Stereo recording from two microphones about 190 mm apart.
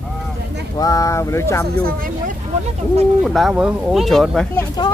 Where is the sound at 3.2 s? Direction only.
Centre (ahead or behind).